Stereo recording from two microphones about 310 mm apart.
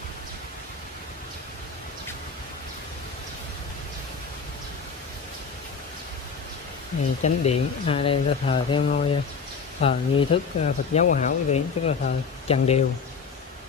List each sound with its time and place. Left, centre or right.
7.2 s speech: centre